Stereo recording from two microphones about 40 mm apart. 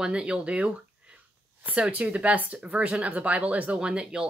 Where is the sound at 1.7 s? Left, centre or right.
Right.